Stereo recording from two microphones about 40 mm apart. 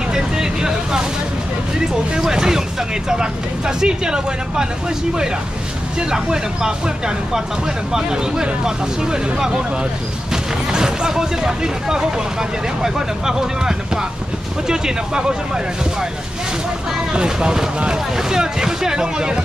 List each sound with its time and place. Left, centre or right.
0.1 s speech: centre
2.1 s speech: centre
5.9 s speech: centre
7.9 s speech: centre
17.1 s speech: right